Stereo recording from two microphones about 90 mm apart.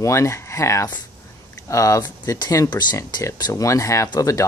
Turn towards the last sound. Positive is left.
turn(degrees=40)  # may be behind; listen again after turning